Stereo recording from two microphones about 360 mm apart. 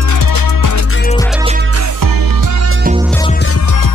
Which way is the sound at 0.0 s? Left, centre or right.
Left.